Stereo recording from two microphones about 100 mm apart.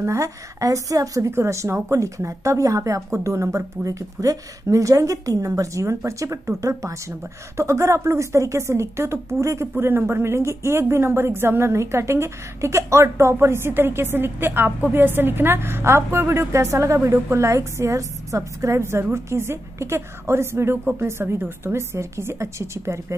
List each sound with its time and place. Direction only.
0.0 s a woman's voice: 30° right (ahead or behind)